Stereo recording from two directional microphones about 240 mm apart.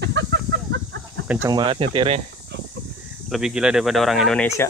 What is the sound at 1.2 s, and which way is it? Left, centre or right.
Speech, centre.